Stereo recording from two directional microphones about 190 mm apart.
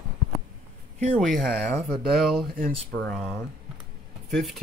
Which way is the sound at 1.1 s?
Centre (ahead or behind).